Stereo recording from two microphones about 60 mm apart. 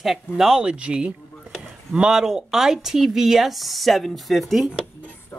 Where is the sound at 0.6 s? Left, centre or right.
Centre.